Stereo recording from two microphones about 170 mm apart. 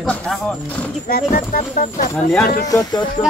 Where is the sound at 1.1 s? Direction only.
55° left (ahead or behind).